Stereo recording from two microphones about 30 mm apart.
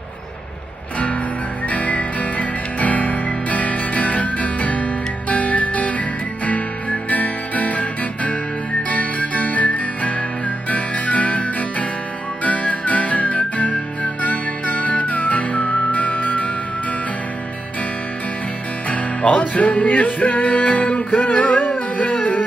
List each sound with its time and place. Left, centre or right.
1.7 s music: left
19.5 s music: left
20.4 s music: left